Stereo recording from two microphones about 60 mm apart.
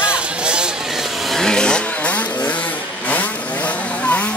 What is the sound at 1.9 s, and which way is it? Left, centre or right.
Vehicle, left.